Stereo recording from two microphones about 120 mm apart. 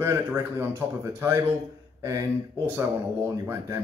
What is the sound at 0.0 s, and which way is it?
Speech, 20° right (ahead or behind).